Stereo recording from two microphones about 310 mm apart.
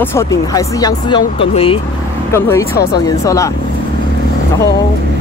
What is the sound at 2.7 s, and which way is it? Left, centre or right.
Speech, left.